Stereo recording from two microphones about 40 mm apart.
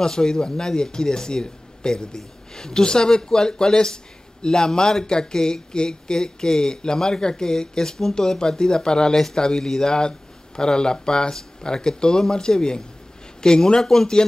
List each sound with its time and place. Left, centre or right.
0.0 s speech: centre